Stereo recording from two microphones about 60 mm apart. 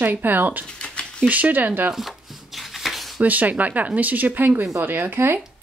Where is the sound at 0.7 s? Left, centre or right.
Centre.